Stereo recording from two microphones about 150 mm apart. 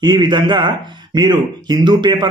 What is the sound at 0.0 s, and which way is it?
Speech, 30° right (ahead or behind).